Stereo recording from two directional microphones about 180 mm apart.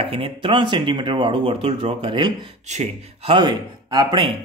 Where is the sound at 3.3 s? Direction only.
25° right (ahead or behind).